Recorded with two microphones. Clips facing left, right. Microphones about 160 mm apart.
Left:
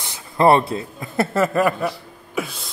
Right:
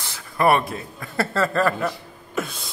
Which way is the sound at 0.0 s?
25° left (ahead or behind).